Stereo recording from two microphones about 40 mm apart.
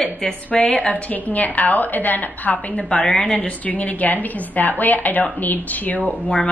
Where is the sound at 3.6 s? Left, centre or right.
Left.